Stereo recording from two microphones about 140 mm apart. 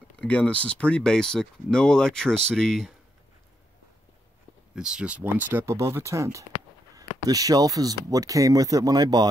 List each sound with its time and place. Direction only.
0.2 s speech: 10° left (ahead or behind)
4.7 s speech: 5° right (ahead or behind); by 9.3 s 30° right (ahead or behind)